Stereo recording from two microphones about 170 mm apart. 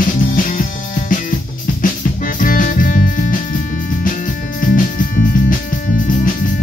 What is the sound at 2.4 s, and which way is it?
Music, 55° left (ahead or behind).